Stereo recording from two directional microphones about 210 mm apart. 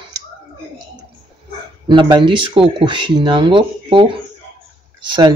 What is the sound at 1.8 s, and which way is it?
Speech, 20° right (ahead or behind).